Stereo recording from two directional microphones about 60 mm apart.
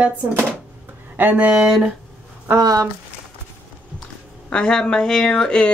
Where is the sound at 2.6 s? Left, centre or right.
Right.